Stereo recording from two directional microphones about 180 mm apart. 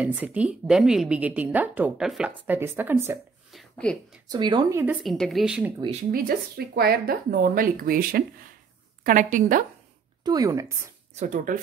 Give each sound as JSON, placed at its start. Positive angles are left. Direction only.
{"t": 0.0, "sound": "a woman's voice", "side_deg": -10}
{"t": 3.5, "sound": "a sound", "side_deg": 5}
{"t": 4.3, "sound": "speech", "side_deg": -25}
{"t": 5.0, "sound": "a woman's voice", "side_deg": 0}
{"t": 6.1, "sound": "speech", "side_deg": -55}
{"t": 10.2, "sound": "speech", "side_deg": -20}
{"t": 11.1, "sound": "speech", "side_deg": -45}